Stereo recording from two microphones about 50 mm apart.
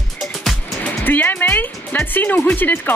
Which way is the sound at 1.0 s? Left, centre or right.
Left.